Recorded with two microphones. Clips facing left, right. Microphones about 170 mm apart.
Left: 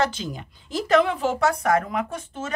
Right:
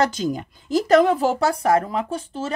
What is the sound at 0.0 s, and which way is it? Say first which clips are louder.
Speech: right 4 dB; 40° right (ahead or behind).